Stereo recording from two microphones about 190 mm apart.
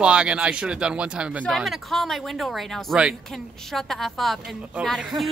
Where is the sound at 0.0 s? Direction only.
5° right (ahead or behind).